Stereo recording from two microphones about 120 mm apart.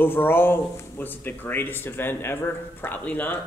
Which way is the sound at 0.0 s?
20° left (ahead or behind).